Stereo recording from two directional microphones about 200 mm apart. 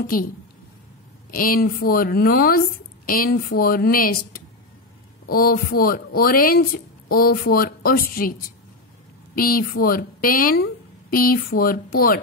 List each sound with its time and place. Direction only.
0.0 s a woman's voice: 45° left (ahead or behind)
1.3 s a woman's voice: 45° left (ahead or behind)